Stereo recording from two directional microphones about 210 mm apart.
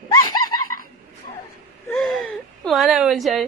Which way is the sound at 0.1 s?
20° left (ahead or behind).